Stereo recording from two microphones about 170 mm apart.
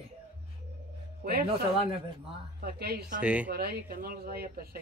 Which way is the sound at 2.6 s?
60° right (ahead or behind).